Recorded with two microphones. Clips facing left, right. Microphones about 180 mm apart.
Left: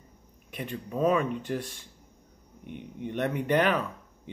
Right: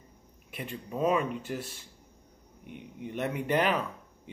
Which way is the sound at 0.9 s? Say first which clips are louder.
Left 2 dB; 10° right (ahead or behind).